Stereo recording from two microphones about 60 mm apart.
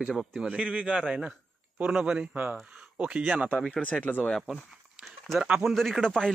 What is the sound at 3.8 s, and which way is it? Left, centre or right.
Speech, left.